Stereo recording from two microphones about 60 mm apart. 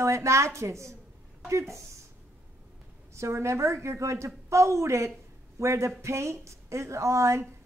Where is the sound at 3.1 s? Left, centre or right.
Right.